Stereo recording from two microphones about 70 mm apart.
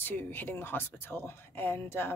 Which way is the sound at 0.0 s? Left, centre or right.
Left.